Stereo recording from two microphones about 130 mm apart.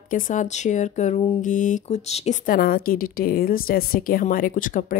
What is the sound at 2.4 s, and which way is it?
A woman's voice, 90° left.